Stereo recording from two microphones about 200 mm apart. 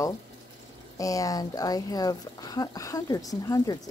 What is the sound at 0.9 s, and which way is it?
A woman's voice, 15° left (ahead or behind).